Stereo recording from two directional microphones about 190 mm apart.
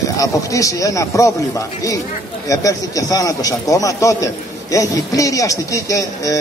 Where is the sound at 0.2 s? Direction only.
15° left (ahead or behind).